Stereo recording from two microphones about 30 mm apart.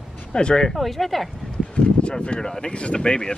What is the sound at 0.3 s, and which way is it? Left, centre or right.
Speech, left.